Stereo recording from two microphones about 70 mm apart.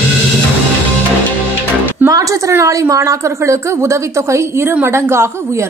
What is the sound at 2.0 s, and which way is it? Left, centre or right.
A woman's voice, right.